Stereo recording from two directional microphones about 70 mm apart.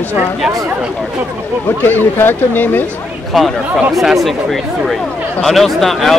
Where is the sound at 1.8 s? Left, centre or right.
Left.